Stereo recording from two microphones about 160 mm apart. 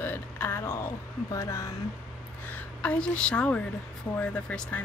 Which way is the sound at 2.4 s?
10° left (ahead or behind).